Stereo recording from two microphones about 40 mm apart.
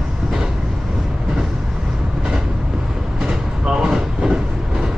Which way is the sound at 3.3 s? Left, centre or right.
Centre.